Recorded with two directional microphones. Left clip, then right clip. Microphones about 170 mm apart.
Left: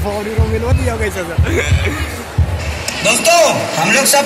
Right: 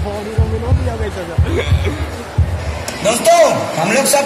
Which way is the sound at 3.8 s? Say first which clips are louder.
Left 2 dB; 50° right (ahead or behind).